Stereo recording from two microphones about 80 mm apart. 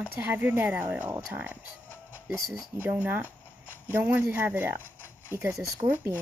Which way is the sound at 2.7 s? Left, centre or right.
Right.